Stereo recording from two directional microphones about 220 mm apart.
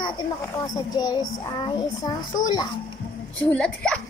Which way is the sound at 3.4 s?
5° left (ahead or behind).